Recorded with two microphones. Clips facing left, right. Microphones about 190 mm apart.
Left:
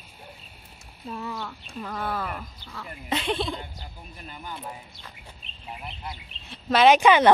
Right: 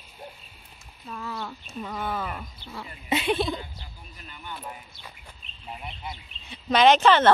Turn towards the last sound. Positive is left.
turn(degrees=10)  # may be behind; listen again after turning